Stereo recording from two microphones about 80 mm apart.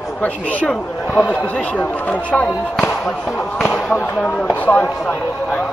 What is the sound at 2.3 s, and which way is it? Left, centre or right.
Speech, centre.